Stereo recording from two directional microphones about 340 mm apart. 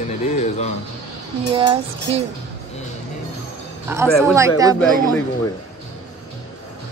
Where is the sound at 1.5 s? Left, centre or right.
Centre.